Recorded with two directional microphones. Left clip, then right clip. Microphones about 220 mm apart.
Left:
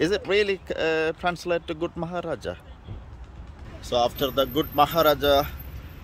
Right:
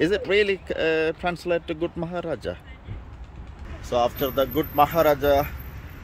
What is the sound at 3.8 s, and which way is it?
Speech, 15° left (ahead or behind).